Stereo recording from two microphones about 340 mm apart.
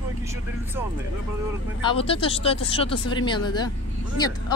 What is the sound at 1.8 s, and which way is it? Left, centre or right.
Speech, centre.